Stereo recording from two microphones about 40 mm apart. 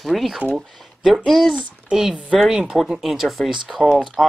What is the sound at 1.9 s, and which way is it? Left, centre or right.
Speech, centre.